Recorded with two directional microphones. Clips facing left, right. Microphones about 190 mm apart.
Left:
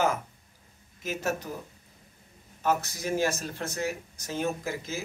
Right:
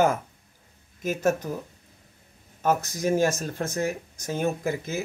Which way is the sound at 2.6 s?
50° right (ahead or behind).